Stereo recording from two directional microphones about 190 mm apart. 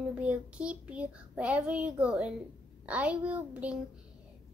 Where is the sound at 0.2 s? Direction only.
5° right (ahead or behind).